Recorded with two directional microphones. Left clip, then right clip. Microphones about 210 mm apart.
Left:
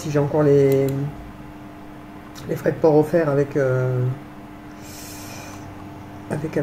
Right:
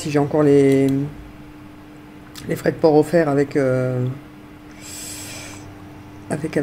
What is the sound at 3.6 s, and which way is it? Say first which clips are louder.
Speech: right 2 dB; 55° right (ahead or behind).